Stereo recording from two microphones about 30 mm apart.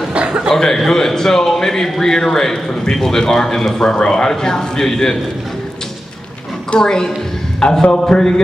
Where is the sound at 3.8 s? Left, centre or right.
Left.